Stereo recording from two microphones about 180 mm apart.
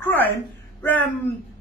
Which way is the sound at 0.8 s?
10° left (ahead or behind).